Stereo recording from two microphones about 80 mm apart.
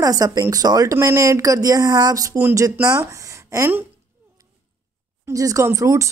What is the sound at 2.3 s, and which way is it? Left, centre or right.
Speech, right.